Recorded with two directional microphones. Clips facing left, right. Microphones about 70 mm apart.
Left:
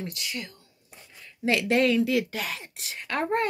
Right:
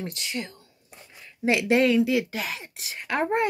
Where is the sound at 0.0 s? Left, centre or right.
Right.